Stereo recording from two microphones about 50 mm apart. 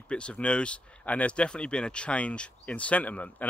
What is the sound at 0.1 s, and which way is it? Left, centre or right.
Speech, left.